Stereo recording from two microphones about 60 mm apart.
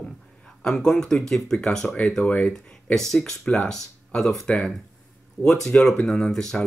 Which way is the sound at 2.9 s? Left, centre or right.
Centre.